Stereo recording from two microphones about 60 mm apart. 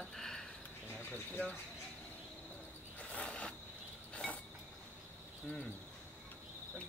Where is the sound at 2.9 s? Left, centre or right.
Left.